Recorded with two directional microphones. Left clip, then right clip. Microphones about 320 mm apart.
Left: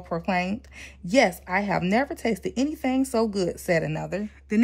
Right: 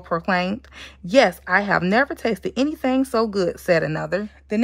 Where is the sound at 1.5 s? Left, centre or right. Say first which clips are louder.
Right 6 dB; centre.